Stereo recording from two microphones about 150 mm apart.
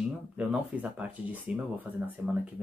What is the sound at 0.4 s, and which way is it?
Speech, 10° right (ahead or behind).